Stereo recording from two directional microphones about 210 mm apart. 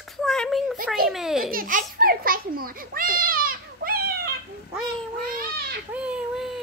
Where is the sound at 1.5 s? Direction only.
40° right (ahead or behind).